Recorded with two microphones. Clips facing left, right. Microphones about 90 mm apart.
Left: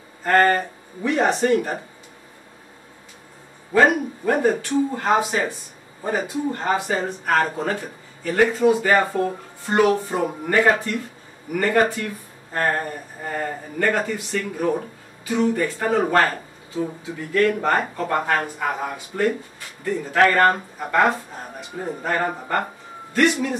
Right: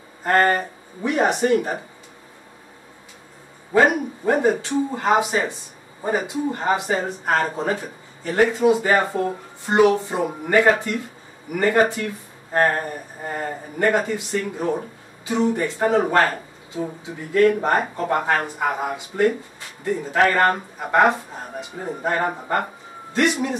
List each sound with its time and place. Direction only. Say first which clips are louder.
0.2 s speech: left 1 dB; 15° right (ahead or behind)
3.7 s speech: even; 20° right (ahead or behind)
13.3 s speech: left 1 dB; 25° right (ahead or behind)